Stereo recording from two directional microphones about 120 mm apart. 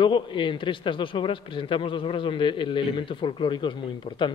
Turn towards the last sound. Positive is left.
turn(degrees=45)  # may be behind; listen again after turning